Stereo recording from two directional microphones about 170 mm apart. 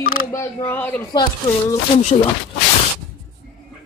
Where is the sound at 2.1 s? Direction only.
45° left (ahead or behind).